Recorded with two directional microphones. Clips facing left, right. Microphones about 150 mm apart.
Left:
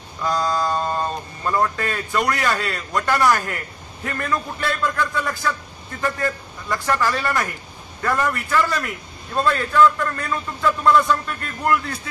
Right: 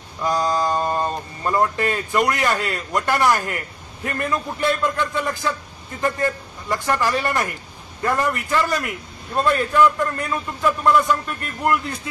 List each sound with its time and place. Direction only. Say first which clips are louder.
0.2 s speech: right 1 dB; 15° right (ahead or behind)
8.5 s a man's voice: even; 20° right (ahead or behind)